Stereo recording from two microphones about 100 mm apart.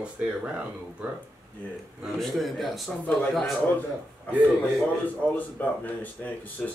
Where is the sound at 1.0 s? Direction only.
15° right (ahead or behind).